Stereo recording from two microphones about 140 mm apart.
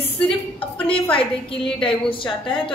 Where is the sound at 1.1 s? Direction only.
40° left (ahead or behind).